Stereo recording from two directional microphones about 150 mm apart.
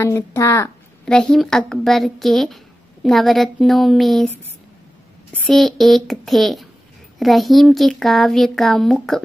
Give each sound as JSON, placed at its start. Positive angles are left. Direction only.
{"t": 0.0, "sound": "speech", "side_deg": 20}
{"t": 1.0, "sound": "a woman's voice", "side_deg": 5}
{"t": 5.5, "sound": "a woman's voice", "side_deg": 0}